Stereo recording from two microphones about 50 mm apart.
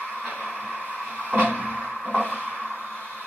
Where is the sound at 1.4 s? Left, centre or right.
Left.